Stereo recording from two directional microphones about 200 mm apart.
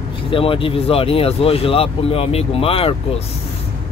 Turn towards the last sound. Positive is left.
turn(degrees=30)  # may be behind; listen again after turning